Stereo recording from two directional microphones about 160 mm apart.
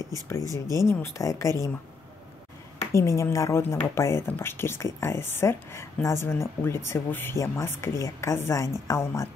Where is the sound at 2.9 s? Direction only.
20° left (ahead or behind).